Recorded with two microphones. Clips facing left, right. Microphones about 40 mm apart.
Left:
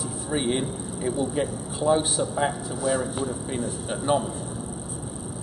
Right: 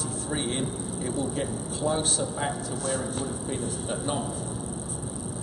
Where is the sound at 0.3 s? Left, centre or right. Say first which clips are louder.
Left 5 dB; centre.